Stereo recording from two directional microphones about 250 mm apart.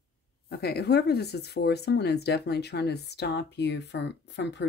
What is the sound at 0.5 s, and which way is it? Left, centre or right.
Speech, left.